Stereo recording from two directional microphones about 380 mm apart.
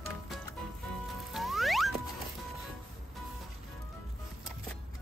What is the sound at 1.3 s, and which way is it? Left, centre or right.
Music, centre.